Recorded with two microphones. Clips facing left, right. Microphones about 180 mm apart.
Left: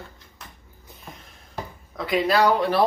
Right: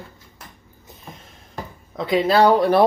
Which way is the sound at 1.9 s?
25° right (ahead or behind).